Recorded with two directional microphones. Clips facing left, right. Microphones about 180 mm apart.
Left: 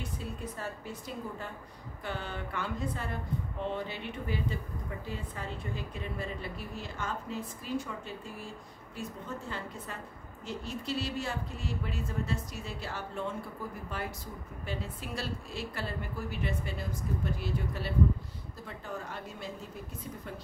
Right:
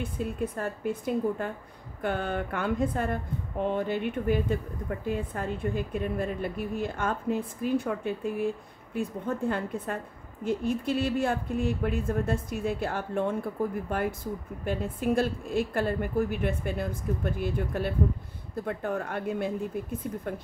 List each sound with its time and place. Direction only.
0.0 s speech: 55° right (ahead or behind)